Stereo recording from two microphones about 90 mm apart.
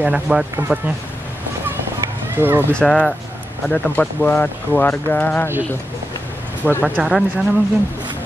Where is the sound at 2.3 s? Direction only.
25° right (ahead or behind).